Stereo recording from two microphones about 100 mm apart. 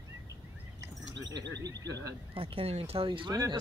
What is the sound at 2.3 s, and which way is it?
Speech, 70° right (ahead or behind).